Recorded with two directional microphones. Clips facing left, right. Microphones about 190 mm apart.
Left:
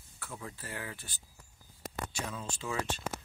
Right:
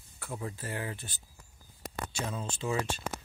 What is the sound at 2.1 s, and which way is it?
Speech, 25° right (ahead or behind).